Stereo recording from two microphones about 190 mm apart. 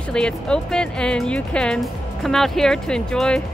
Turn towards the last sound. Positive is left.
turn(degrees=5)  # may be behind; listen again after turning